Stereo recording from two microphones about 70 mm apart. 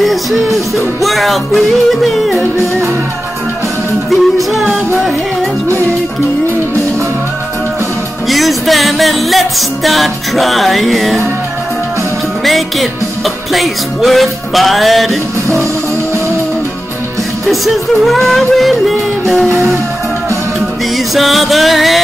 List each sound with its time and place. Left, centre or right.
0.0 s music: centre
4.1 s music: centre
8.3 s music: centre
12.4 s music: centre
17.5 s music: centre
21.1 s music: centre